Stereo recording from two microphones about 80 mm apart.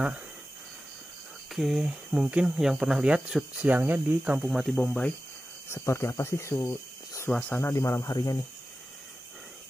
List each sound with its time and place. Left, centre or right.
1.5 s speech: centre; by 4.4 s right
4.4 s speech: centre
4.8 s speech: centre
5.7 s speech: left
6.6 s a sound: left
7.2 s speech: centre
7.6 s speech: left